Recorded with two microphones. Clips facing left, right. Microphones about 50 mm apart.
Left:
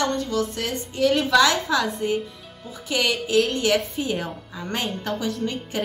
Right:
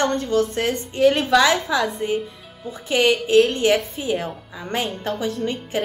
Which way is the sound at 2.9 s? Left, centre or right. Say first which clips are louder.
Right 5 dB; right.